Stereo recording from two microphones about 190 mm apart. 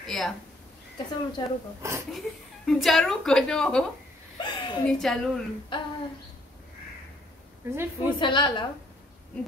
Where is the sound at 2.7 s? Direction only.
Centre (ahead or behind).